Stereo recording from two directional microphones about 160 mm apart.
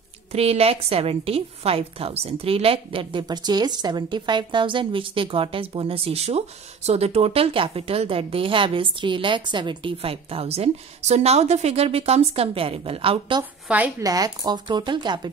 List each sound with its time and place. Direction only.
0.3 s a woman's voice: 40° right (ahead or behind)
13.4 s a woman's voice: 10° right (ahead or behind)
14.0 s speech: 25° right (ahead or behind)